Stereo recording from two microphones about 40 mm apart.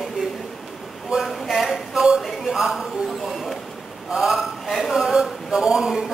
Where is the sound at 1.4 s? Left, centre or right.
Centre.